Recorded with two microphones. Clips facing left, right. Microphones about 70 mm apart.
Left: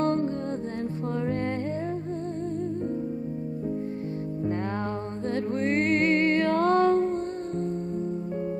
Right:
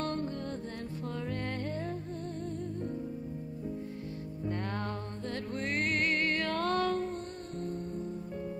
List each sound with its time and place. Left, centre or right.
0.0 s music: left
5.3 s music: left